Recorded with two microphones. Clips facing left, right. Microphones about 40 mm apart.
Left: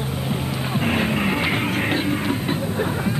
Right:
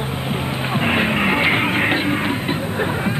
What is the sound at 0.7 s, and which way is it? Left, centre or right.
Music, right.